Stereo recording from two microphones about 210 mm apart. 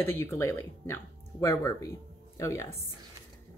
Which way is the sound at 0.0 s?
10° left (ahead or behind).